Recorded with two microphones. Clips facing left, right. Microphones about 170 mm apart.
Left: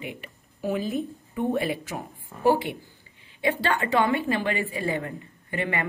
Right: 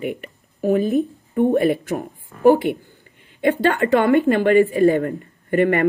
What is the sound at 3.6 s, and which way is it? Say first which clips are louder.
Speech: right 7 dB; 55° right (ahead or behind).